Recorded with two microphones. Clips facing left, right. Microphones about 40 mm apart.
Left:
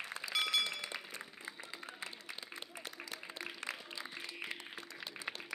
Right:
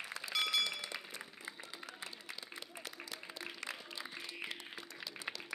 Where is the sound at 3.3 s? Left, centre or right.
Left.